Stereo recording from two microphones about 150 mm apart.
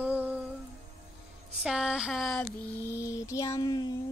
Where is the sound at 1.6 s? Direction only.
5° right (ahead or behind).